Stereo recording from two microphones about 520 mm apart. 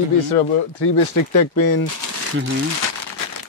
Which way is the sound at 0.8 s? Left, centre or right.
Left.